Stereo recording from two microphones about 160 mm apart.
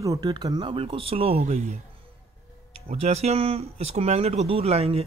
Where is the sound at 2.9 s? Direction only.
40° right (ahead or behind).